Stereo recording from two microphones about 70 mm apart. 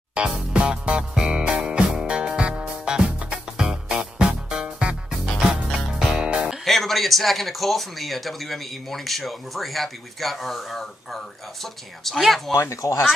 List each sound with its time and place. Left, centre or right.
0.1 s music: centre
6.6 s speech: centre
12.5 s speech: left